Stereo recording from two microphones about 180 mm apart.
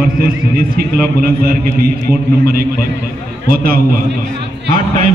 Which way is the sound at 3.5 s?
55° right (ahead or behind).